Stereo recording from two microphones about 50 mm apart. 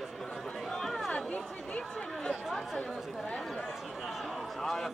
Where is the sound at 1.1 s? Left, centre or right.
Left.